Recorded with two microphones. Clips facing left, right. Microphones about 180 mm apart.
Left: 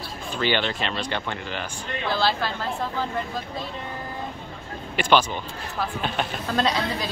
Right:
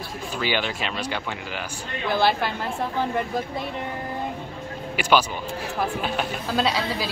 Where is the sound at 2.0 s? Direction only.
20° right (ahead or behind).